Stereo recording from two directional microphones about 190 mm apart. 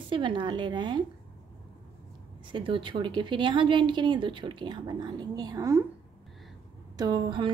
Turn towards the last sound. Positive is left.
turn(degrees=-25)  # may be behind; listen again after turning